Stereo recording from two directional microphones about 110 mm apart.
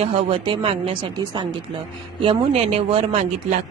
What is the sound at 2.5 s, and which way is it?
Speech, 70° right (ahead or behind).